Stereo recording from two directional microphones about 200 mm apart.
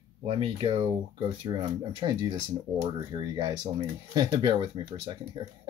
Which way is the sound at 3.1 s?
20° right (ahead or behind).